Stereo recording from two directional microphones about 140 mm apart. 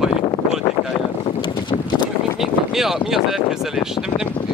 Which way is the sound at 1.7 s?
35° left (ahead or behind).